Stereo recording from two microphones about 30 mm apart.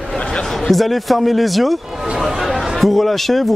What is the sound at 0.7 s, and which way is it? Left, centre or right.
A man's voice, centre.